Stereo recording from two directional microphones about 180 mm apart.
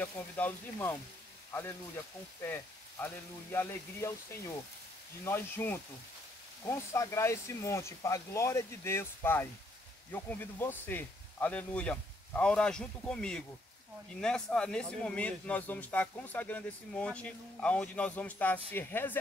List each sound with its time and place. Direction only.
0.0 s a man's voice: 10° left (ahead or behind)